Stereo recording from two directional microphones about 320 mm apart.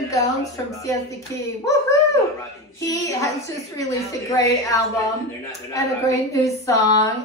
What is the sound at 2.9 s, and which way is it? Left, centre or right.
Speech, centre.